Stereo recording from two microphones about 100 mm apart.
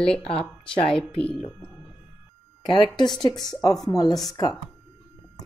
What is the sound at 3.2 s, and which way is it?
A woman's voice, 40° left (ahead or behind).